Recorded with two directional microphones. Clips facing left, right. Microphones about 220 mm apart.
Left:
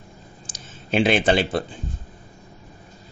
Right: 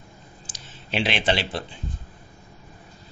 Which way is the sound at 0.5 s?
50° left (ahead or behind).